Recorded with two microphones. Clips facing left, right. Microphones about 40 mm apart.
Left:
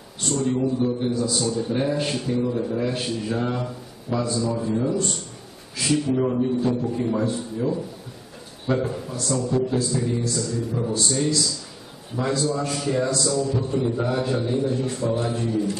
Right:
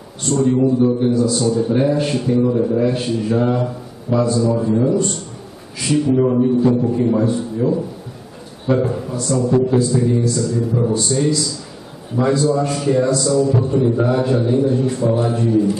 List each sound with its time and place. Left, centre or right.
0.2 s a man's voice: centre
2.4 s a man's voice: centre
2.7 s a man's voice: centre